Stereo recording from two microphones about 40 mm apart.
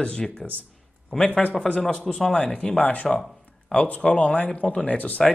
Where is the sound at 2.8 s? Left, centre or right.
Left.